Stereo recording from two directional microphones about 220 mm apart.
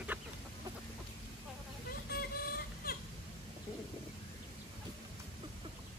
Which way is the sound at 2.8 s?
40° left (ahead or behind).